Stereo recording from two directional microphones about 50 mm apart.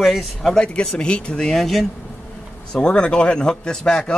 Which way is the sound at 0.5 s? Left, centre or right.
Left.